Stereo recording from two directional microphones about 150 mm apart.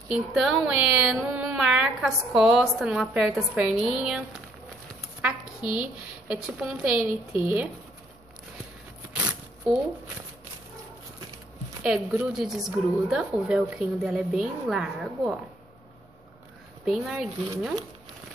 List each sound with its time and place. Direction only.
0.1 s a woman's voice: 5° right (ahead or behind)
9.1 s zipper: 10° right (ahead or behind)
11.8 s speech: 10° right (ahead or behind)
13.7 s speech: 5° right (ahead or behind)
16.8 s speech: centre (ahead or behind)